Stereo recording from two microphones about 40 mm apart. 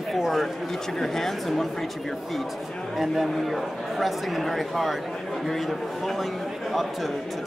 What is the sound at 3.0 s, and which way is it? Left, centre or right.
Speech, centre.